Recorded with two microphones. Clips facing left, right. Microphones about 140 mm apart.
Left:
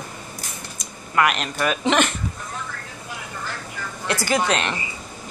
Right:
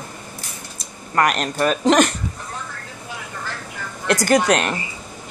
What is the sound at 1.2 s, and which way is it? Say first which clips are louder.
Speech: right 2 dB; 40° right (ahead or behind).